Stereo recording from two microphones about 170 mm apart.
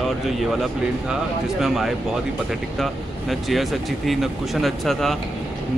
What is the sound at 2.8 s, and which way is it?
Speech, centre (ahead or behind).